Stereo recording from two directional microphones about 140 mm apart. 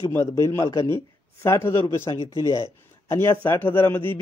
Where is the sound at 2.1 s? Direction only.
40° left (ahead or behind).